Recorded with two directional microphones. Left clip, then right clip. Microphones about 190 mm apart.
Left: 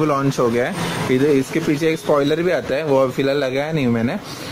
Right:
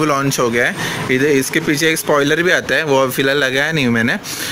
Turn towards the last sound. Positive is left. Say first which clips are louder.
# right 5 dB
turn(degrees=-5)  # may be behind; listen again after turning